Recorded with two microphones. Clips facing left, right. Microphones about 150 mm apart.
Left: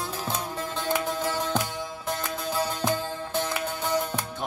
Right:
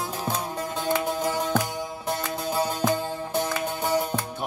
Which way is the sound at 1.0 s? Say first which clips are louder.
Right 2 dB; 15° right (ahead or behind).